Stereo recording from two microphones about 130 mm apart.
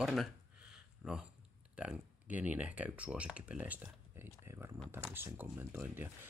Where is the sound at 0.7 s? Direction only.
5° right (ahead or behind).